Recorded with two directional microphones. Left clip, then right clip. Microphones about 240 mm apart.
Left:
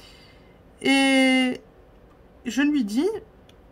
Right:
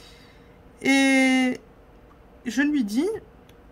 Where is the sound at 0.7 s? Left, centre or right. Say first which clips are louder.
Even; centre.